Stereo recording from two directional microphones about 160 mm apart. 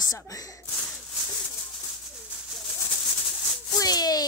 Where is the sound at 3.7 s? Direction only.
25° left (ahead or behind).